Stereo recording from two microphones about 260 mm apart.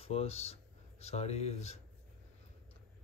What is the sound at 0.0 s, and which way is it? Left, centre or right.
Speech, left.